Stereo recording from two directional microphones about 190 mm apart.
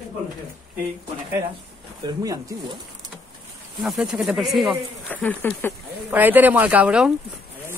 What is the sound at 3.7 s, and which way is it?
Speech, centre (ahead or behind).